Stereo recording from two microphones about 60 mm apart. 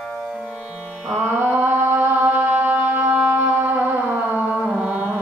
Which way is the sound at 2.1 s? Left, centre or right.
Right.